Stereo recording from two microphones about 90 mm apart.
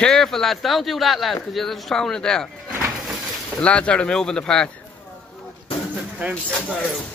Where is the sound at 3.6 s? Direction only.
15° left (ahead or behind).